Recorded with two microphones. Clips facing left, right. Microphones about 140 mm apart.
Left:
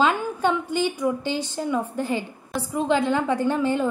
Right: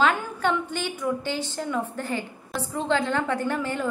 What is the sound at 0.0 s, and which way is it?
A woman's voice, 15° left (ahead or behind).